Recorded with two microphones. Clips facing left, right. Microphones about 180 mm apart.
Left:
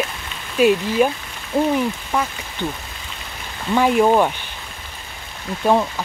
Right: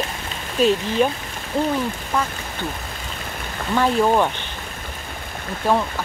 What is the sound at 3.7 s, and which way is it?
Speech, 10° left (ahead or behind).